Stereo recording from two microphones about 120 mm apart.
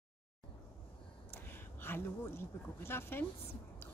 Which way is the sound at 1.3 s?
20° left (ahead or behind).